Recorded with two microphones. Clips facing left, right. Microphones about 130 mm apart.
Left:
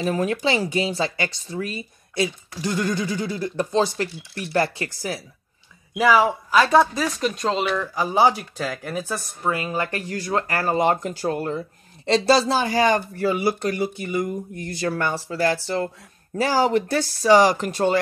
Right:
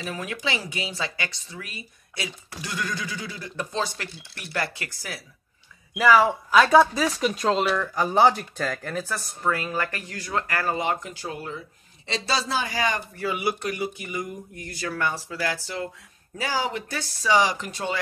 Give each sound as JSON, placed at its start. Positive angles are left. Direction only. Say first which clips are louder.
{"t": 0.0, "sound": "speech", "louder": "left 9 dB", "side_deg": 35}
{"t": 5.9, "sound": "speech", "louder": "left 1 dB", "side_deg": 5}
{"t": 10.8, "sound": "speech", "louder": "left 7 dB", "side_deg": 40}